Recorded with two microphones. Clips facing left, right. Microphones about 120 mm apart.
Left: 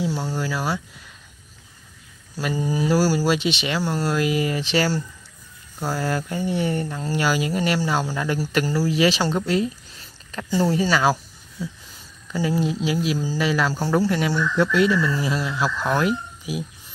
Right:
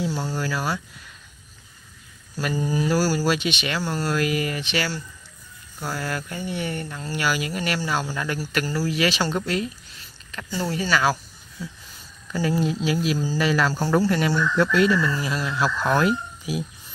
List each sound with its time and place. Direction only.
0.1 s speech: centre (ahead or behind)
0.4 s speech: 20° left (ahead or behind)
2.5 s speech: 10° left (ahead or behind)
2.9 s speech: 30° left (ahead or behind)
12.3 s speech: 15° left (ahead or behind)
14.1 s speech: 20° left (ahead or behind)
15.8 s speech: 10° left (ahead or behind)